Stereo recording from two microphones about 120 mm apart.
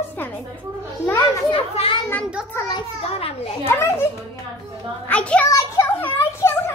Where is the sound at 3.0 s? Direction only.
60° left (ahead or behind).